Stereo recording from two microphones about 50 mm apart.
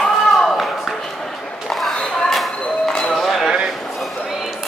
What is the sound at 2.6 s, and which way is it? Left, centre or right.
Music, centre.